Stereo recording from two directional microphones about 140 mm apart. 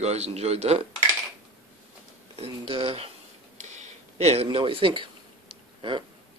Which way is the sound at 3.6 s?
55° right (ahead or behind).